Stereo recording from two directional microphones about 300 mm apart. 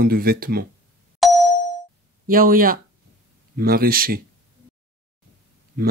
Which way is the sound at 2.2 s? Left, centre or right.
Right.